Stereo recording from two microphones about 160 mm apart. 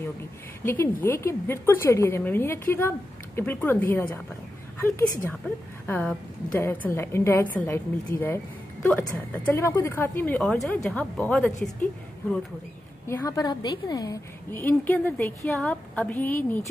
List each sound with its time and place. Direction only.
0.7 s a woman's voice: 15° left (ahead or behind)
13.0 s a woman's voice: 20° left (ahead or behind)